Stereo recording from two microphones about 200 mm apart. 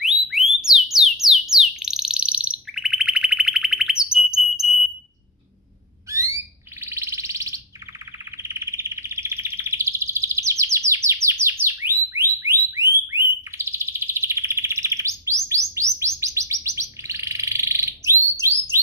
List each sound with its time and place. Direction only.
0.0 s alarm: centre (ahead or behind)
0.9 s bird: centre (ahead or behind)
6.8 s a sound: 15° right (ahead or behind)
8.4 s bird: 15° right (ahead or behind)
12.1 s alarm: 15° right (ahead or behind)
15.4 s bird: 15° right (ahead or behind)